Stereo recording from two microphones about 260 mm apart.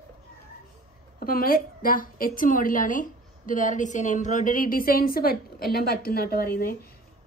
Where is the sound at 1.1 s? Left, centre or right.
Left.